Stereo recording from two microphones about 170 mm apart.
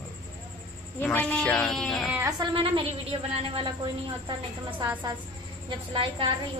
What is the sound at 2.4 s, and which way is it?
A woman's voice, 30° right (ahead or behind).